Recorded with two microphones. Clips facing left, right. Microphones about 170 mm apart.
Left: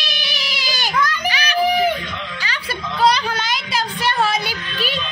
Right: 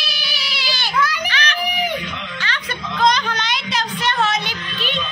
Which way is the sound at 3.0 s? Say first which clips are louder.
Left 1 dB; 10° left (ahead or behind).